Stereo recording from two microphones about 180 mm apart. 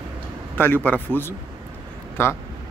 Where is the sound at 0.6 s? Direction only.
10° left (ahead or behind).